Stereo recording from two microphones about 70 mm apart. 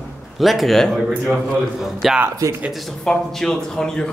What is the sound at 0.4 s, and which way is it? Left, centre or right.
A man's voice, centre.